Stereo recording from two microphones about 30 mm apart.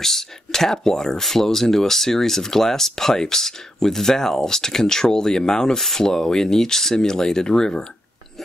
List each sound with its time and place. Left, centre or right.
0.0 s speech: centre
5.8 s speech: centre